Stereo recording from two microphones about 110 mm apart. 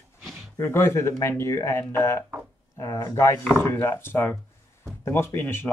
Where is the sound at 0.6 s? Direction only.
20° left (ahead or behind).